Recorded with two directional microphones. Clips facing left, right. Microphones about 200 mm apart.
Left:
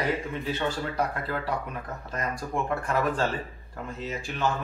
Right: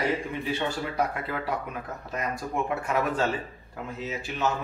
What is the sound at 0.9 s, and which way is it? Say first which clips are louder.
Speech: even; 5° right (ahead or behind).